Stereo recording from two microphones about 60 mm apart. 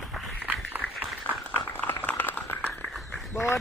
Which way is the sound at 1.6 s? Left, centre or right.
Left.